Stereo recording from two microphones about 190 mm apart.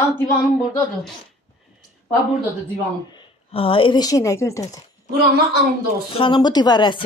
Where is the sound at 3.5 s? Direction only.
30° left (ahead or behind).